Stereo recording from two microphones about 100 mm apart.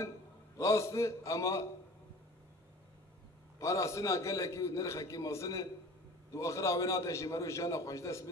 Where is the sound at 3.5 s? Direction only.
30° left (ahead or behind).